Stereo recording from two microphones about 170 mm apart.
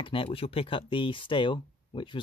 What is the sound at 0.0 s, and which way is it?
Speech, 30° left (ahead or behind).